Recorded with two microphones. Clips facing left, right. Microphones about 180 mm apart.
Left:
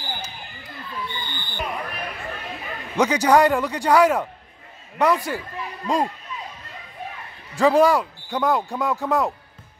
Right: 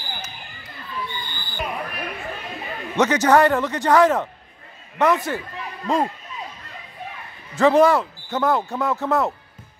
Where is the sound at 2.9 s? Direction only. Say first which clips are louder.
Right 1 dB; 10° left (ahead or behind).